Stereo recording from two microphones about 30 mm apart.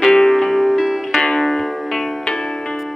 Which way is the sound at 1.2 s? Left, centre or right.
Centre.